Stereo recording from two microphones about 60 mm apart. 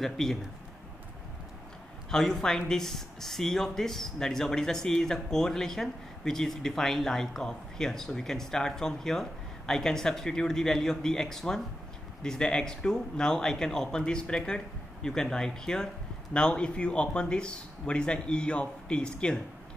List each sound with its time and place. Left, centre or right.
0.0 s a man's voice: centre
2.0 s speech: centre